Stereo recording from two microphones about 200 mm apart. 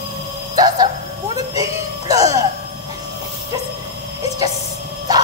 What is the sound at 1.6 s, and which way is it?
Music, 15° right (ahead or behind).